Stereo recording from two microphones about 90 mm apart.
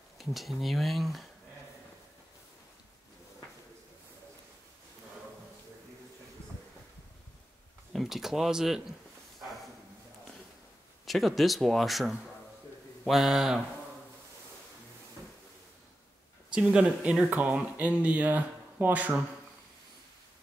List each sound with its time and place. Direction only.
0.2 s speech: centre (ahead or behind)
7.9 s speech: centre (ahead or behind)
11.1 s speech: centre (ahead or behind)
16.5 s speech: 10° right (ahead or behind)